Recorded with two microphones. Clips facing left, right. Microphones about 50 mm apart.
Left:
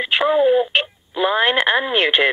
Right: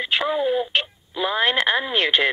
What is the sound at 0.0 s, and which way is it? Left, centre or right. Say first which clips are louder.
Speech: left 6 dB; left.